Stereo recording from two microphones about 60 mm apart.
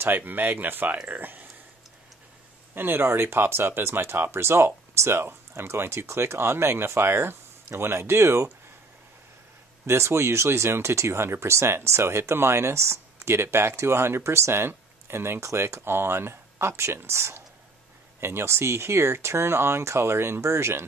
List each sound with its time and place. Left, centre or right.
0.0 s speech: right
2.7 s speech: right
9.8 s speech: right